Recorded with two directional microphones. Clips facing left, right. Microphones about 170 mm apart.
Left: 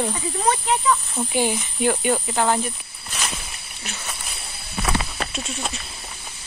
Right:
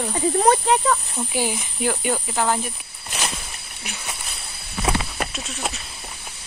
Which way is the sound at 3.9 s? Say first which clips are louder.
Even; 15° right (ahead or behind).